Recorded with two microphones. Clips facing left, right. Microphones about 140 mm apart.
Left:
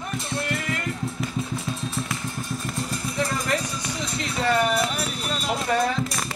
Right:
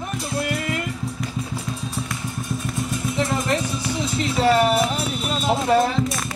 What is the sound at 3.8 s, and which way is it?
Music, centre (ahead or behind).